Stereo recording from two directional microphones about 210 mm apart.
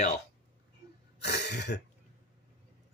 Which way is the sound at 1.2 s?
55° left (ahead or behind).